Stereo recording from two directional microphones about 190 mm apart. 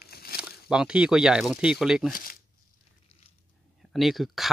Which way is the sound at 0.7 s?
5° right (ahead or behind).